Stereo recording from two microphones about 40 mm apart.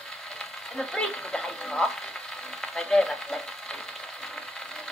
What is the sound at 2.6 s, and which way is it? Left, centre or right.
Frying, centre.